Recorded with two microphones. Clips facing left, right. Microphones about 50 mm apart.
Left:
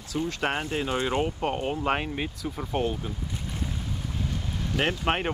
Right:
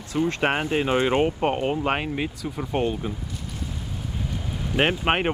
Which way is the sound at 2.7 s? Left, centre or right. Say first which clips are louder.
Right 3 dB; right.